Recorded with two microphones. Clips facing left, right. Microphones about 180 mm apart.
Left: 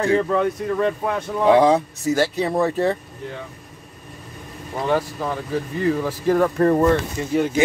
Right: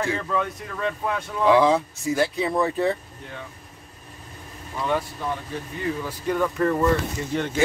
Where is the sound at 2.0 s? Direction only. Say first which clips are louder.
Left 3 dB; 75° left (ahead or behind).